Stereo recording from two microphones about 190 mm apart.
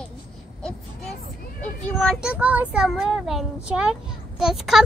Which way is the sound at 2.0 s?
5° right (ahead or behind).